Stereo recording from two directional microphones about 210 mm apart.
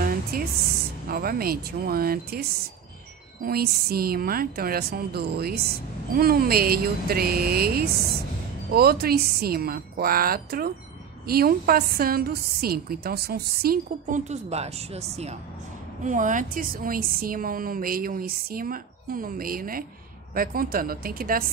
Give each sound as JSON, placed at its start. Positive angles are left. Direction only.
{"t": 0.0, "sound": "a woman's voice", "side_deg": -45}
{"t": 3.4, "sound": "a woman's voice", "side_deg": -45}
{"t": 14.3, "sound": "a woman's voice", "side_deg": -30}